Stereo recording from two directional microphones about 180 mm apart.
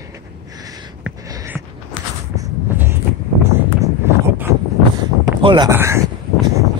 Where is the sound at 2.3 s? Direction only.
15° right (ahead or behind).